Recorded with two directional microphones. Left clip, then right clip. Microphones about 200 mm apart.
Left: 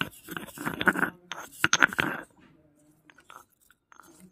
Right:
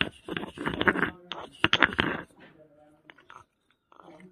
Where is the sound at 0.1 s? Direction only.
40° left (ahead or behind).